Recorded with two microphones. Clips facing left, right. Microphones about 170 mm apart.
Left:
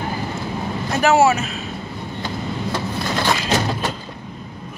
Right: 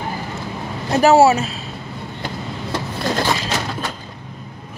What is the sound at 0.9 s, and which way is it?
Speech, 35° right (ahead or behind).